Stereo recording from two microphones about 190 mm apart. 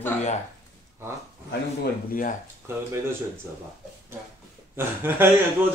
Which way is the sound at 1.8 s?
45° left (ahead or behind).